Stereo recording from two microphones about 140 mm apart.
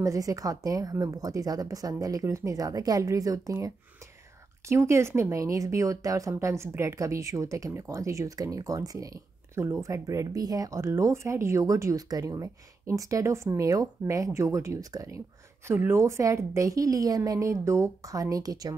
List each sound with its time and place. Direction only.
0.0 s speech: 25° right (ahead or behind)